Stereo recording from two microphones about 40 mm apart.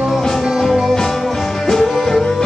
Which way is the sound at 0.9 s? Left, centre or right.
Centre.